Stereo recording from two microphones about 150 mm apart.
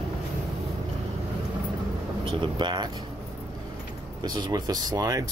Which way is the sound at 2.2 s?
35° right (ahead or behind).